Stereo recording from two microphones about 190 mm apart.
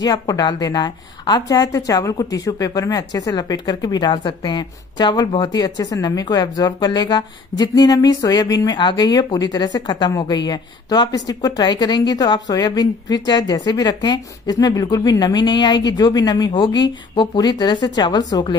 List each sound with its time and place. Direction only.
0.0 s a woman's voice: 20° left (ahead or behind)